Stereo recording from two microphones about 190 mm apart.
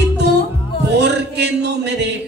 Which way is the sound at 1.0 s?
65° right (ahead or behind).